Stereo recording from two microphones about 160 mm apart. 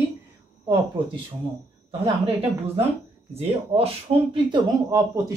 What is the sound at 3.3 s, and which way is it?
Speech, 40° right (ahead or behind).